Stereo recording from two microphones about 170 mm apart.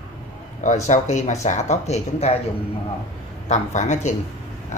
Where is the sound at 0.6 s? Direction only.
45° left (ahead or behind).